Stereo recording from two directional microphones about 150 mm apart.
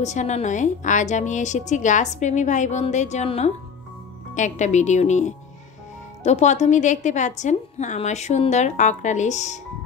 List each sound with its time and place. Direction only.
0.0 s a woman's voice: 50° left (ahead or behind)